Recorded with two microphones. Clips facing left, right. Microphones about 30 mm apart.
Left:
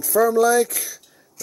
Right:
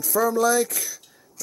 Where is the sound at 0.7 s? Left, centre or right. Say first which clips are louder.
Even; left.